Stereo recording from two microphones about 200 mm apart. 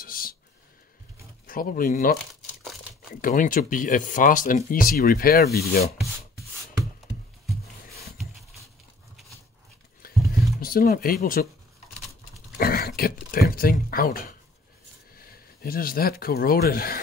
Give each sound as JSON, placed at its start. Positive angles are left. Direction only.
{"t": 0.0, "sound": "a sound", "side_deg": 45}
{"t": 1.5, "sound": "speech", "side_deg": 45}
{"t": 3.2, "sound": "speech", "side_deg": 40}
{"t": 10.6, "sound": "speech", "side_deg": 45}
{"t": 12.5, "sound": "a sound", "side_deg": 50}
{"t": 15.1, "sound": "speech", "side_deg": 50}